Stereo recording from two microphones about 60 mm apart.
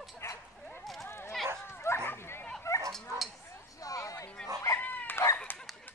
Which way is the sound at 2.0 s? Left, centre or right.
Left.